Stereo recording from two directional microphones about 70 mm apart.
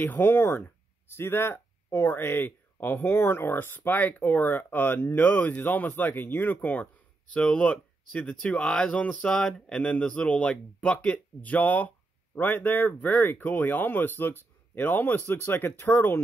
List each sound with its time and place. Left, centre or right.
0.0 s speech: left